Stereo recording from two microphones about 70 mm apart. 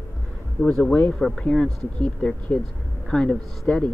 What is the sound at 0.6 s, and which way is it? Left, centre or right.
Speech, centre.